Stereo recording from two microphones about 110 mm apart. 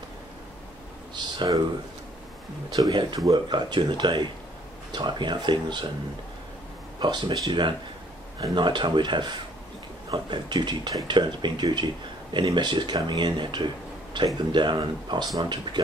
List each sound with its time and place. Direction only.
1.1 s speech: 40° right (ahead or behind)
2.7 s speech: 40° right (ahead or behind)
7.0 s speech: 45° right (ahead or behind)